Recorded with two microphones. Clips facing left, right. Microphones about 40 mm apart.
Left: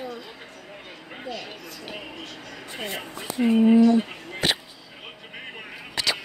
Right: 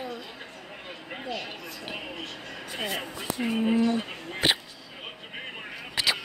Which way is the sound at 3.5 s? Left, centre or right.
Centre.